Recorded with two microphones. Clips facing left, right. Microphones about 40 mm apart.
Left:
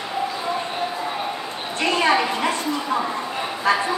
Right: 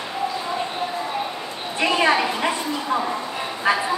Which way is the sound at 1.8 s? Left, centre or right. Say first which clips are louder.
Even; centre.